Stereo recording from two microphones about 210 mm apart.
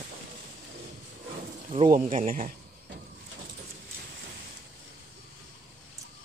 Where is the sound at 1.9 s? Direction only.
35° right (ahead or behind).